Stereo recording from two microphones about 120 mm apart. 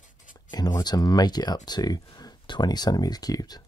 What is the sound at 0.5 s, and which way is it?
Speech, 35° left (ahead or behind).